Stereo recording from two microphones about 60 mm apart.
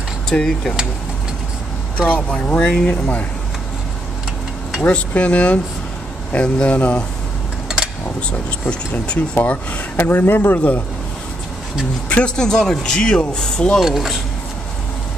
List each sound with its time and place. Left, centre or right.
0.3 s speech: centre
2.0 s speech: left
4.8 s speech: left
7.6 s a sound: centre
8.3 s speech: centre
12.1 s speech: centre
13.7 s speech: centre